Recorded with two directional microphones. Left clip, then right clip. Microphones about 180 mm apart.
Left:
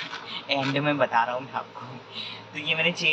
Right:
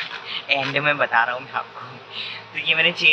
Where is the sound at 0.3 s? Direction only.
5° right (ahead or behind).